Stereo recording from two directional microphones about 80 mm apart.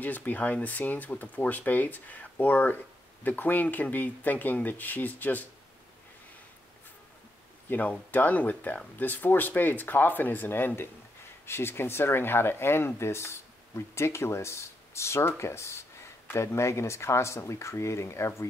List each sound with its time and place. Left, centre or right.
0.0 s speech: left
7.7 s speech: left